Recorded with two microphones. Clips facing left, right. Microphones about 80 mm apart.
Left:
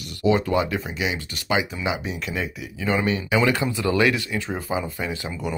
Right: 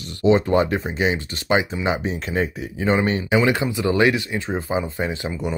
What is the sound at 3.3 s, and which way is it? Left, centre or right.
Speech, right.